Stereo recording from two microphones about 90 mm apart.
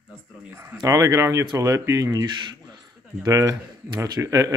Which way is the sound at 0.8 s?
35° right (ahead or behind).